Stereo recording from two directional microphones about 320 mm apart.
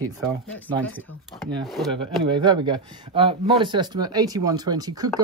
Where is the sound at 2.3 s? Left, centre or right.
Centre.